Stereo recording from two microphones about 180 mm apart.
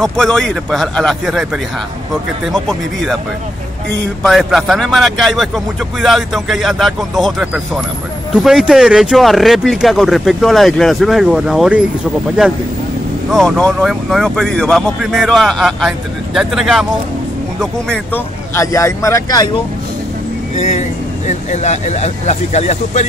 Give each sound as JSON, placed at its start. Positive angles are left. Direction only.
{"t": 0.0, "sound": "a man's voice", "side_deg": 0}
{"t": 4.2, "sound": "a man's voice", "side_deg": 0}
{"t": 13.3, "sound": "a man's voice", "side_deg": 5}
{"t": 20.5, "sound": "speech", "side_deg": 40}